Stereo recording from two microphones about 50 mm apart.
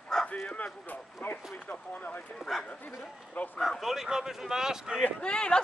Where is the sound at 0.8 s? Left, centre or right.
Left.